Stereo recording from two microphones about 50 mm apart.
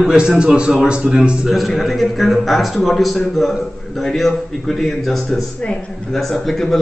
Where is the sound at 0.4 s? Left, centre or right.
Right.